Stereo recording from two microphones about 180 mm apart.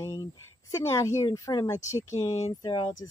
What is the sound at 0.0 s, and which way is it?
Speech, 20° left (ahead or behind).